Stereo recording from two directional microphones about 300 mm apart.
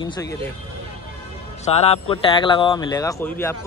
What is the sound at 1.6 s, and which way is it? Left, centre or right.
Speech, centre.